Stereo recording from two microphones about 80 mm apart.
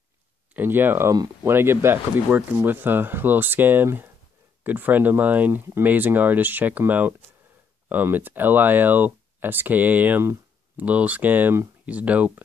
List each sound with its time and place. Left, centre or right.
0.6 s speech: right